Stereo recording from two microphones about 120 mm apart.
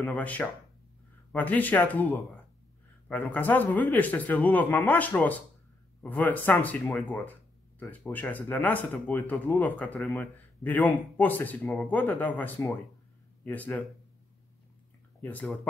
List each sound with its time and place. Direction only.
0.0 s speech: 10° left (ahead or behind)
6.8 s speech: centre (ahead or behind)
7.9 s speech: 15° left (ahead or behind)